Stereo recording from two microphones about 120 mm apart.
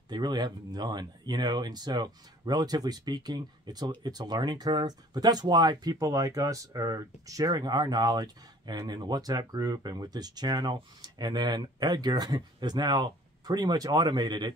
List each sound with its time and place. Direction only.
0.1 s speech: 35° right (ahead or behind)